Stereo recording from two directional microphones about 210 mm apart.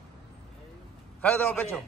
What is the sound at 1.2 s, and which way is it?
Speech, 5° left (ahead or behind).